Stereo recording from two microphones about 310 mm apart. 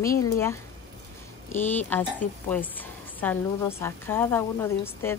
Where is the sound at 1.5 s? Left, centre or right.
Centre.